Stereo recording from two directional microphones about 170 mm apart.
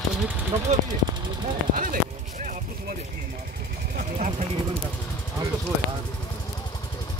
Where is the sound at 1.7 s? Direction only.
55° right (ahead or behind).